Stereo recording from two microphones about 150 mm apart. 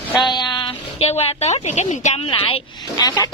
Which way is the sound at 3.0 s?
25° left (ahead or behind).